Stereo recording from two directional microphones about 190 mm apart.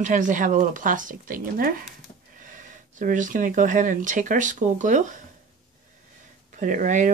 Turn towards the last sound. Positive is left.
turn(degrees=-40)  # may be behind; listen again after turning